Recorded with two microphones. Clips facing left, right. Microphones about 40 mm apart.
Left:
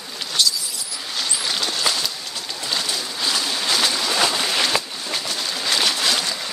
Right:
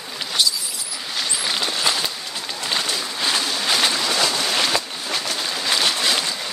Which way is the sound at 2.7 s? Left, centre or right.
Right.